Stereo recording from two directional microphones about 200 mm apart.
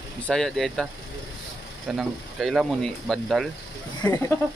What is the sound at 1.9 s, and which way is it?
Speech, centre (ahead or behind).